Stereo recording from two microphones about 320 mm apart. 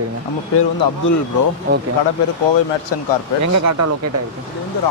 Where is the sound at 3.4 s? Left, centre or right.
Right.